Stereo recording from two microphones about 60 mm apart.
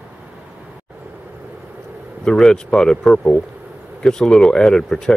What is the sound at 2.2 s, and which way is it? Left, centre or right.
Speech, centre.